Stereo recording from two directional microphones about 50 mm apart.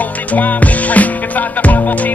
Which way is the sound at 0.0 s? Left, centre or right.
Left.